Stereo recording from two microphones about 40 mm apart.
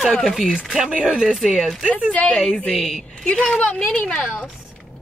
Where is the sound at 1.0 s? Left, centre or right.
Centre.